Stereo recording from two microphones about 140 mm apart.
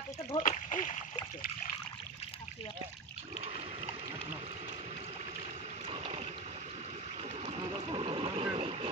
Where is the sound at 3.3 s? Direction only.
45° right (ahead or behind).